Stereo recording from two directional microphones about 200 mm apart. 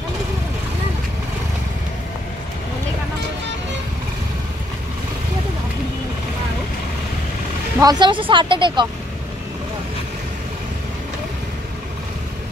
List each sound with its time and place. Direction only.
7.8 s speech: 20° right (ahead or behind)